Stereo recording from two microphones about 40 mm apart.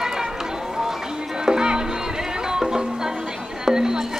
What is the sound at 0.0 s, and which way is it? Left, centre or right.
Run, centre.